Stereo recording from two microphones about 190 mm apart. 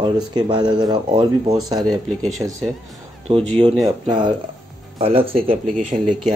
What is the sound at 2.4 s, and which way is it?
Speech, 20° right (ahead or behind).